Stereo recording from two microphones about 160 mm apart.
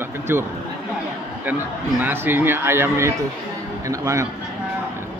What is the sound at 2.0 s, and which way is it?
Speech, 15° right (ahead or behind).